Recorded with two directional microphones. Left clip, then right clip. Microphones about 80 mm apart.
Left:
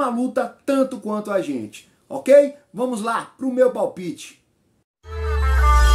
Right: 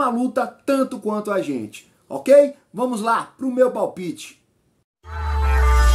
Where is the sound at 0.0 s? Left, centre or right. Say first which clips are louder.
Right 1 dB; right.